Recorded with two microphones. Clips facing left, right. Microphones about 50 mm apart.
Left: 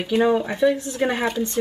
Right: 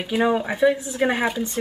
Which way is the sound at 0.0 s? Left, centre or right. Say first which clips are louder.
Left 2 dB; centre.